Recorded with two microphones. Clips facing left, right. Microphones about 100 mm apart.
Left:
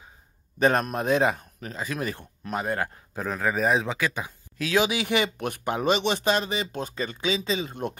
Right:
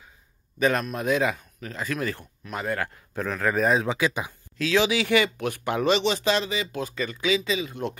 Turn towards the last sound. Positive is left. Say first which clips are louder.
# right 1 dB
turn(degrees=45)  # may be behind; listen again after turning